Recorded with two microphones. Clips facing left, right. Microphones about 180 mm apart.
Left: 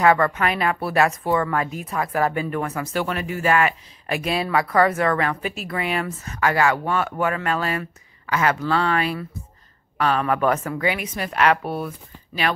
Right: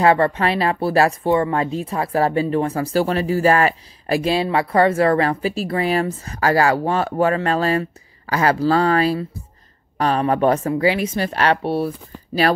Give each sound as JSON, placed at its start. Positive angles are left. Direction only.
{"t": 0.0, "sound": "speech", "side_deg": -30}